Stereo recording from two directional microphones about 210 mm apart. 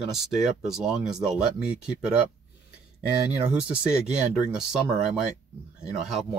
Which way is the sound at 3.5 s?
5° right (ahead or behind).